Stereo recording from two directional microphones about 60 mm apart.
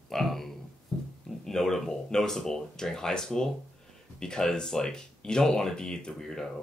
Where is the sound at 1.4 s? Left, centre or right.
Centre.